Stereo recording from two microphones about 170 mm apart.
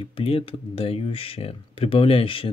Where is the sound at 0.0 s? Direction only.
30° left (ahead or behind).